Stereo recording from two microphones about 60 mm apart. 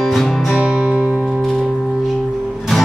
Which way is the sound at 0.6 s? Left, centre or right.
Right.